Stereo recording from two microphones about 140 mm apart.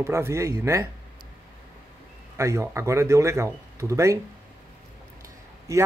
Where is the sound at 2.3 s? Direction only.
20° right (ahead or behind).